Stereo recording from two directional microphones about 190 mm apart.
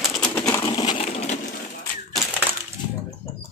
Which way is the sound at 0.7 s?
25° left (ahead or behind).